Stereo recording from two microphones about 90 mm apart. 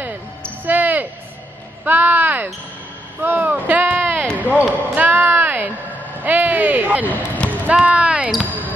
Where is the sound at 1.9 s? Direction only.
20° right (ahead or behind).